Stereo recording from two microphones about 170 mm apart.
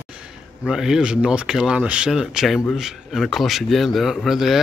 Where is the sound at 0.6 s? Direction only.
5° right (ahead or behind).